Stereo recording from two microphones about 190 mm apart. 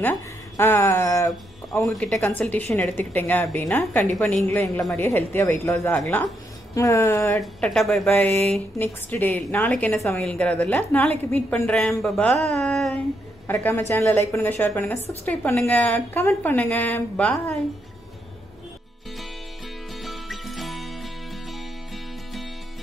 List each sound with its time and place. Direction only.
0.0 s speech: 10° left (ahead or behind)
1.9 s speech: 5° left (ahead or behind)
7.6 s a woman's voice: centre (ahead or behind)
20.0 s music: centre (ahead or behind)